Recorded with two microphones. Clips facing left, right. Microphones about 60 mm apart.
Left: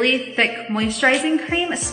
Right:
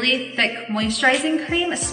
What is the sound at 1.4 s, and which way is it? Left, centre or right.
Speech, centre.